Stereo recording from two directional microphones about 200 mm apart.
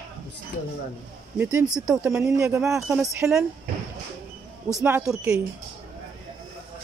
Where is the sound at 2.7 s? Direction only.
Centre (ahead or behind).